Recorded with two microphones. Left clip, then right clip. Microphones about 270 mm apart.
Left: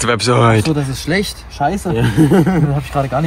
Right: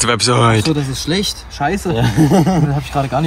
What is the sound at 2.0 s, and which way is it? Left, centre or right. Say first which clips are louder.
Speech: left 2 dB; centre.